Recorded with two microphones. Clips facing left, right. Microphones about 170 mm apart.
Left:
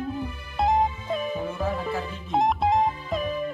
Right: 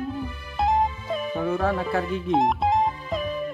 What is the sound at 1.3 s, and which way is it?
Music, 65° right (ahead or behind).